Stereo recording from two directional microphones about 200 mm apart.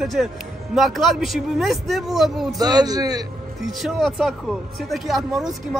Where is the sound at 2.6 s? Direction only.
20° right (ahead or behind).